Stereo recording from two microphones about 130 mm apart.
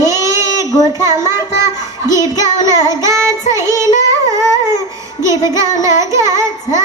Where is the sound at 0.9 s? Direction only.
20° right (ahead or behind).